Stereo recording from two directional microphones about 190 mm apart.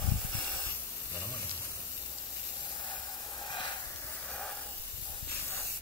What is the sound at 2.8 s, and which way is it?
Hiss, 25° left (ahead or behind).